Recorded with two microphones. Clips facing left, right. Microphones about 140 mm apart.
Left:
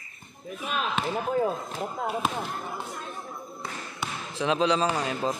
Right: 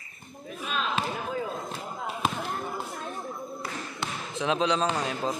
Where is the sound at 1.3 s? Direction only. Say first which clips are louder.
Left 6 dB; 45° left (ahead or behind).